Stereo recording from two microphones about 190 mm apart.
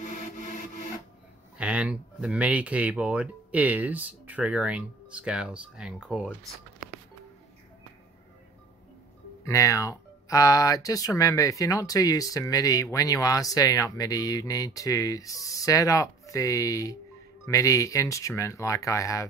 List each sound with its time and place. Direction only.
0.0 s music: 40° left (ahead or behind)
1.6 s speech: 5° right (ahead or behind)
9.4 s speech: 15° left (ahead or behind)